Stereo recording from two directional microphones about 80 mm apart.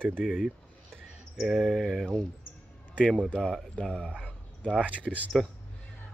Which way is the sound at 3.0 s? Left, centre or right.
Centre.